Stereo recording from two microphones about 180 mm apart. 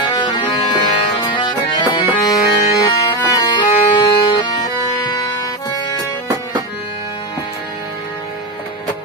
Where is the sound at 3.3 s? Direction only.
25° left (ahead or behind).